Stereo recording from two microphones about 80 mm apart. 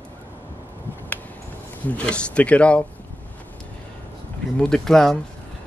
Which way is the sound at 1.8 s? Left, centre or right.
Centre.